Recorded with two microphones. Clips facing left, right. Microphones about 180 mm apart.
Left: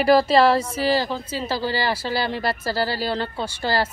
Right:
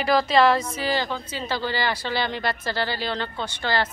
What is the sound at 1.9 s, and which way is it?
Speech, 5° left (ahead or behind).